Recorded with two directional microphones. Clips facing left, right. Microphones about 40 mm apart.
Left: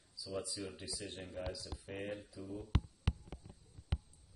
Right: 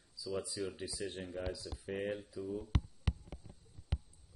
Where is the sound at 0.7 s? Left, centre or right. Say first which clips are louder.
Right 5 dB; centre.